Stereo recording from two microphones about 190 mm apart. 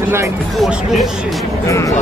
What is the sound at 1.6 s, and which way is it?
Speech, 15° left (ahead or behind).